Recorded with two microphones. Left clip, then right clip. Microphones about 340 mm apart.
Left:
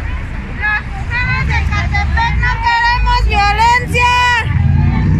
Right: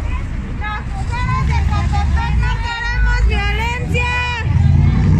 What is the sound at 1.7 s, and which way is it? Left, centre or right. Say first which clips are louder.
Vehicle: left 7 dB; centre.